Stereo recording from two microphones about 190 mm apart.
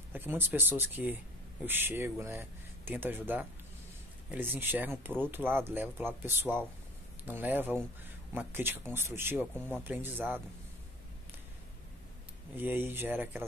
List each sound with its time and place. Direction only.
0.1 s speech: 10° right (ahead or behind)
12.5 s speech: 10° right (ahead or behind)